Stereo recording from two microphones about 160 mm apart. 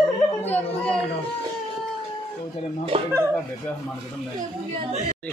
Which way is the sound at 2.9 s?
35° right (ahead or behind).